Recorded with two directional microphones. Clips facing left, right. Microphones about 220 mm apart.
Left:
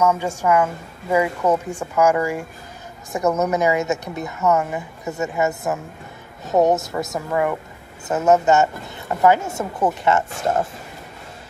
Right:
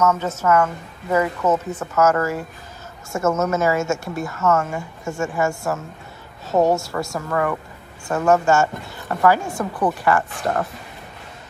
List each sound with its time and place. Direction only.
0.0 s a woman's voice: 10° left (ahead or behind)